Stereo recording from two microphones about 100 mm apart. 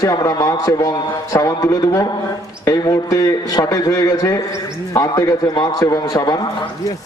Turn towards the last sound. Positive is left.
turn(degrees=40)  # may be behind; listen again after turning